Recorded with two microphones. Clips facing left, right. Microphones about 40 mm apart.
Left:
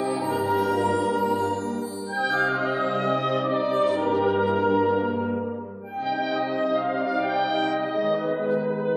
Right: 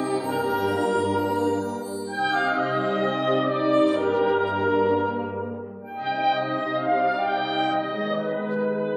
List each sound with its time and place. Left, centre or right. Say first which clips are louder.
0.4 s music: left 2 dB; centre
2.3 s music: even; right
6.0 s music: right 3 dB; right